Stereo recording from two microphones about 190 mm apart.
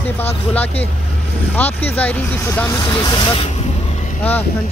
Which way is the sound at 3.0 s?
25° left (ahead or behind).